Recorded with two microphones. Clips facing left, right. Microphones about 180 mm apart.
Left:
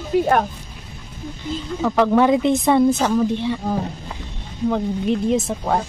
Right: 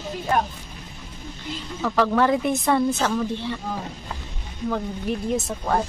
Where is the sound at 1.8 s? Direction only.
15° left (ahead or behind).